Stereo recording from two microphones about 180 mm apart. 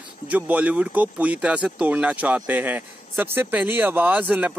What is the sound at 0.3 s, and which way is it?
Speech, 10° right (ahead or behind).